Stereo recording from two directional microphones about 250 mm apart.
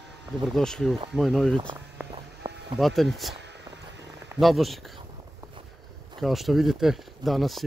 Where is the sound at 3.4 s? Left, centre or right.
Right.